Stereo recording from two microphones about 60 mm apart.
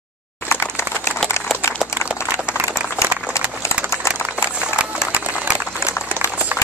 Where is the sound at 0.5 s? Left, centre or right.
Left.